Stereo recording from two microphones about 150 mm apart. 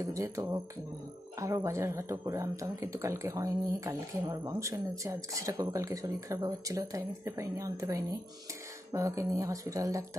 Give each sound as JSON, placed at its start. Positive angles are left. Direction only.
{"t": 0.0, "sound": "speech", "side_deg": -20}